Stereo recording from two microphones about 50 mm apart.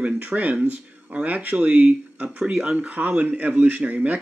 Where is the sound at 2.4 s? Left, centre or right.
Centre.